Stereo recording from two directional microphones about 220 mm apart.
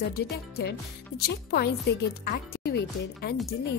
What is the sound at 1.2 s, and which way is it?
Speech, 45° left (ahead or behind).